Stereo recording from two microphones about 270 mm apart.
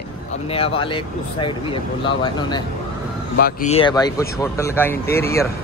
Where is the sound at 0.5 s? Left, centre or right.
Left.